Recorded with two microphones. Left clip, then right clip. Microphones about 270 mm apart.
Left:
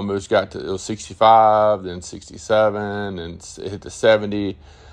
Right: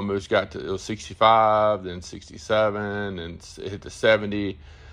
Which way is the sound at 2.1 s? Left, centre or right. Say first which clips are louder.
Left 4 dB; left.